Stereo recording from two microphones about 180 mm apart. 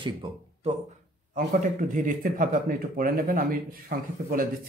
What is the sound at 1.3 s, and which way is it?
Speech, 50° right (ahead or behind).